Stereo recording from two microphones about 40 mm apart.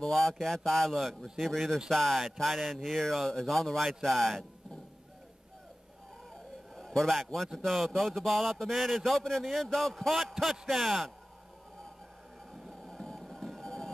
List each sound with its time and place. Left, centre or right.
0.0 s a man's voice: centre
6.7 s a sound: centre
7.5 s a man's voice: centre
12.8 s music: centre